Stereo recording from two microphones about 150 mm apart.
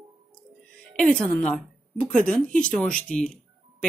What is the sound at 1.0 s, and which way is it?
A woman's voice, 5° left (ahead or behind).